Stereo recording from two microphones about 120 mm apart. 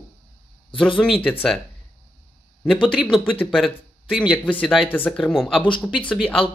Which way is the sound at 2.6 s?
5° right (ahead or behind).